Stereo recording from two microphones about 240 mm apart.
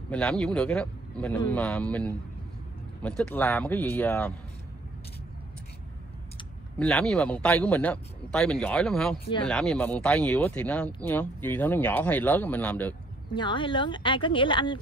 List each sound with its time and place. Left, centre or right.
0.1 s a man's voice: centre
6.8 s a man's voice: centre
13.3 s speech: centre